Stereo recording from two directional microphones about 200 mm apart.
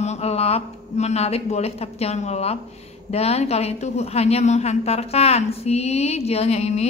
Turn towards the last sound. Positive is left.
turn(degrees=30)  # may be behind; listen again after turning